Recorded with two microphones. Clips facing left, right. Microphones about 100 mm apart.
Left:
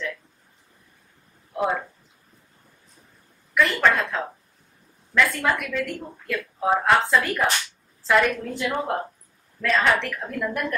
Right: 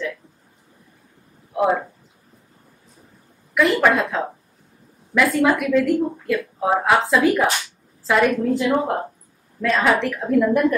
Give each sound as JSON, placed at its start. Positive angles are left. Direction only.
{"t": 1.5, "sound": "speech", "side_deg": -10}
{"t": 3.5, "sound": "speech", "side_deg": -5}